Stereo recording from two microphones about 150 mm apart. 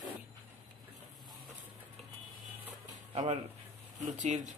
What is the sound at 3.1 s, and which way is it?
Speech, 45° right (ahead or behind).